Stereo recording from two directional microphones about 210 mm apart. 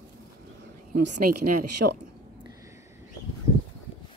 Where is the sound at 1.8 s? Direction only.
50° right (ahead or behind).